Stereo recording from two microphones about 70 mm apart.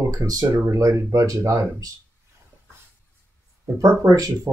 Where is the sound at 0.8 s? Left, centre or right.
Right.